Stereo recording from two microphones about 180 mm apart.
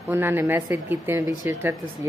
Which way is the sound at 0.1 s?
15° right (ahead or behind).